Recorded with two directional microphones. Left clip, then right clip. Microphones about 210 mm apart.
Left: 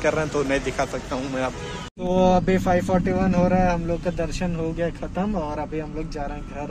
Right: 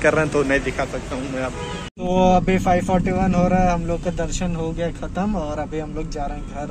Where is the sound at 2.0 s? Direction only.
5° left (ahead or behind).